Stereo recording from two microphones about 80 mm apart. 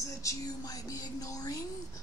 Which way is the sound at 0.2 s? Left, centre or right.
Left.